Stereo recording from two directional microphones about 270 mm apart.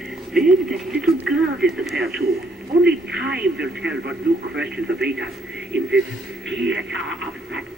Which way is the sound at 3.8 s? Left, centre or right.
Right.